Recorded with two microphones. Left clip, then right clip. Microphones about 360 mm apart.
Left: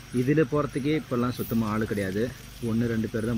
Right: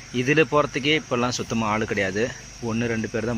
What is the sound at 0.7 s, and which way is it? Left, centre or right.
Cricket, right.